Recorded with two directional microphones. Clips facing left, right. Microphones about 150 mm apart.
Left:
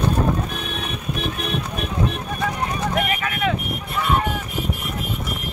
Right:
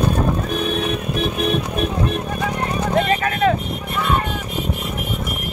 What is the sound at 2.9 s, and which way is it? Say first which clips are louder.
Clip-clop: right 5 dB; 40° right (ahead or behind).